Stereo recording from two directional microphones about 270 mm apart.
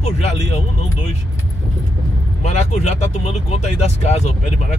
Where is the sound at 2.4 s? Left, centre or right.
Left.